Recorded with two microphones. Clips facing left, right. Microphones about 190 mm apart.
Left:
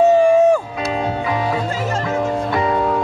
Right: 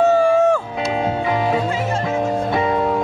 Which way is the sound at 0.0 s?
15° left (ahead or behind).